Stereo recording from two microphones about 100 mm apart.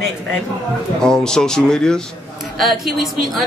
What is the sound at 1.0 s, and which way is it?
Speech, 5° left (ahead or behind).